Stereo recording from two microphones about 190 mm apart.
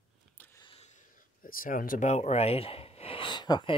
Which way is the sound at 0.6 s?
25° left (ahead or behind).